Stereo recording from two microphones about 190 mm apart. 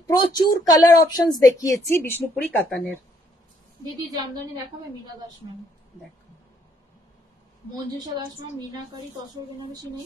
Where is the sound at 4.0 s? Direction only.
20° right (ahead or behind).